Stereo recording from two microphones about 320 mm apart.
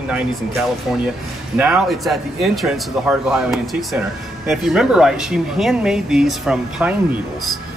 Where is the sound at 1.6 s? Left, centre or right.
Centre.